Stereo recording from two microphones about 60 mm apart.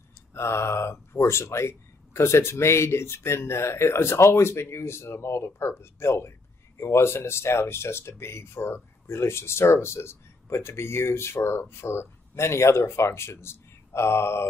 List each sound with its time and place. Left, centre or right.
0.3 s speech: left